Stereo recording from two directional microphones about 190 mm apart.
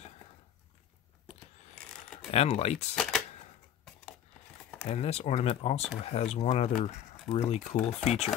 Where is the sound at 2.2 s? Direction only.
30° left (ahead or behind).